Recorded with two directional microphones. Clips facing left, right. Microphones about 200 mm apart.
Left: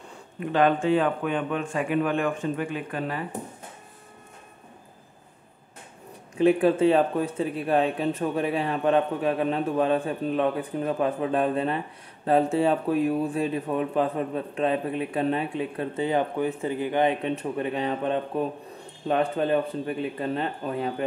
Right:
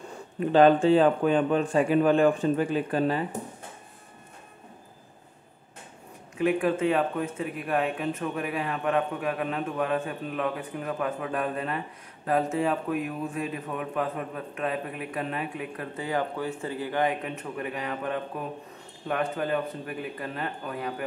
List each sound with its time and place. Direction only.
0.4 s a man's voice: 30° right (ahead or behind)
6.3 s a man's voice: 30° left (ahead or behind)